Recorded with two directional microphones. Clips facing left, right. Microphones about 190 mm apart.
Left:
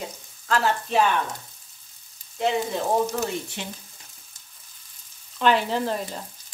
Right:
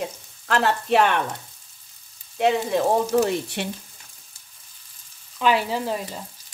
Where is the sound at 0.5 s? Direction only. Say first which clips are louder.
Right 3 dB; 70° right (ahead or behind).